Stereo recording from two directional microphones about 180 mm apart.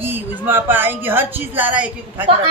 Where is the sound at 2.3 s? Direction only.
30° right (ahead or behind).